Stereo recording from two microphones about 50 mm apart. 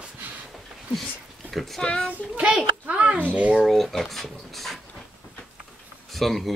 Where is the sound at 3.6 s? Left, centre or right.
Centre.